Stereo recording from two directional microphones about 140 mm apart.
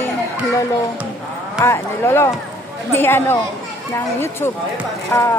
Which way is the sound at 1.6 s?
15° left (ahead or behind).